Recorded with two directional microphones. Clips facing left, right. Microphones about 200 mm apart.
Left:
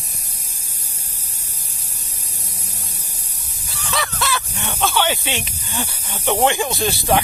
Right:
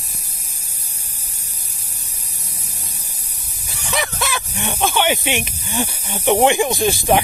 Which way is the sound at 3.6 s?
15° right (ahead or behind).